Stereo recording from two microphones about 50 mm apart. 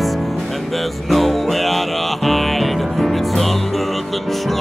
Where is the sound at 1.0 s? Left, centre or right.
Centre.